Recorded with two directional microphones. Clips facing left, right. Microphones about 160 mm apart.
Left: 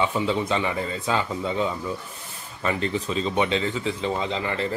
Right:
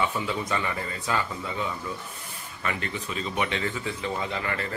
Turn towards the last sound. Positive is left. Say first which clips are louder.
# left 4 dB
turn(degrees=25)  # may be behind; listen again after turning